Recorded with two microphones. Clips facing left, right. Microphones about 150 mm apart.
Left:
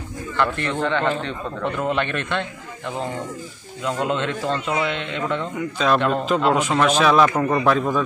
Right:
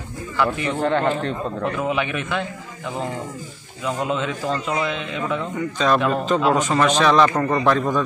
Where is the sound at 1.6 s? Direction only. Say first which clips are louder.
Left 1 dB; 5° right (ahead or behind).